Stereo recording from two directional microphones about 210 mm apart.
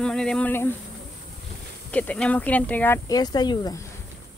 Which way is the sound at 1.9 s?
5° left (ahead or behind).